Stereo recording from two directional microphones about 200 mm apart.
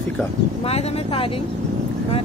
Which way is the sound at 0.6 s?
30° left (ahead or behind).